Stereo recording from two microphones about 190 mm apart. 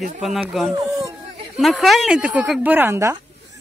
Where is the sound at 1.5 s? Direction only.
Centre (ahead or behind).